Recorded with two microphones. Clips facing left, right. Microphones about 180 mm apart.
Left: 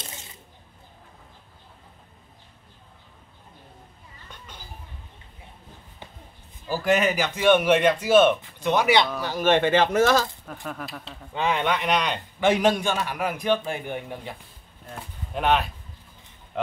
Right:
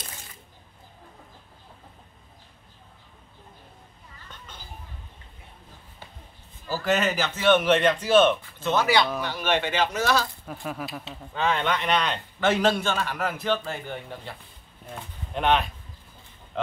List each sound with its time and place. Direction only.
6.7 s a man's voice: 10° left (ahead or behind)
9.2 s speech: 45° left (ahead or behind)
10.4 s speech: 5° right (ahead or behind)
11.3 s a man's voice: 10° left (ahead or behind)